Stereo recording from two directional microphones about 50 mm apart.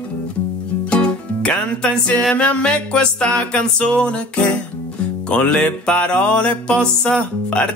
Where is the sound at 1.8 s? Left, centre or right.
Centre.